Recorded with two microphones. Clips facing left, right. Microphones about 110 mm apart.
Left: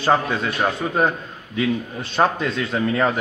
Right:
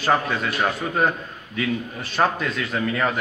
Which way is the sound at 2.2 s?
25° left (ahead or behind).